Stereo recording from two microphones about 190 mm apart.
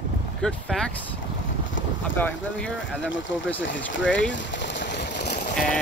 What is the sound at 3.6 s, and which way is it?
Speech, 75° left (ahead or behind).